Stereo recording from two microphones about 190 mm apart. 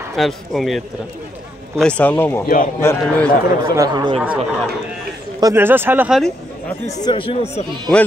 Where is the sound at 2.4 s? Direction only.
45° left (ahead or behind).